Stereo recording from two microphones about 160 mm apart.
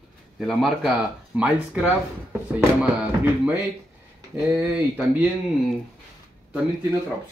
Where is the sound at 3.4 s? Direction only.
10° right (ahead or behind).